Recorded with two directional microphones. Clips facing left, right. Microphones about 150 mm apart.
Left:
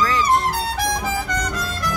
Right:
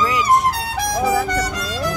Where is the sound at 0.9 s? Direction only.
90° right.